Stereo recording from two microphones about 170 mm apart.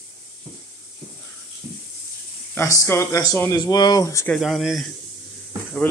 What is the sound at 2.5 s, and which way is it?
Speech, 15° left (ahead or behind).